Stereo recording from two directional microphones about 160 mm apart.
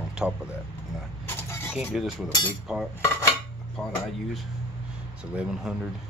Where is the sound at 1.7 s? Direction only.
5° right (ahead or behind).